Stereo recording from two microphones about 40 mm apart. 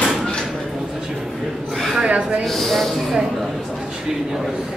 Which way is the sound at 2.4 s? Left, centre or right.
Centre.